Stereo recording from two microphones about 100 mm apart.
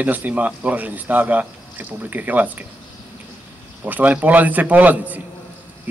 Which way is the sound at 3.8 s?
15° right (ahead or behind).